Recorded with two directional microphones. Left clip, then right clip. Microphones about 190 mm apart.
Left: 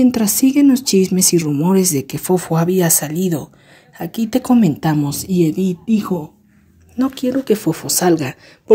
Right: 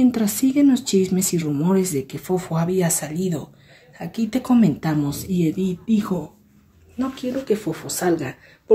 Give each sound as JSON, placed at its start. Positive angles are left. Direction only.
{"t": 0.0, "sound": "speech", "side_deg": 30}
{"t": 7.0, "sound": "speech", "side_deg": 50}